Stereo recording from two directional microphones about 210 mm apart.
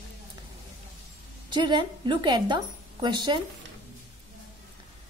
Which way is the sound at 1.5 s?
20° right (ahead or behind).